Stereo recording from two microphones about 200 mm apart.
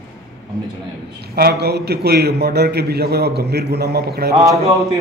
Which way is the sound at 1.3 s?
50° right (ahead or behind).